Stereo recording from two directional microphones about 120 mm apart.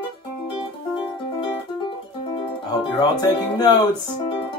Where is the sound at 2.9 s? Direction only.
40° left (ahead or behind).